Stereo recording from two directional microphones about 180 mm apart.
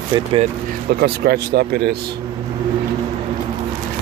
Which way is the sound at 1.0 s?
60° right (ahead or behind).